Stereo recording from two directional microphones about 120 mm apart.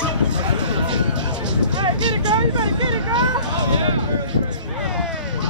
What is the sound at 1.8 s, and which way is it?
Hubbub, 40° right (ahead or behind).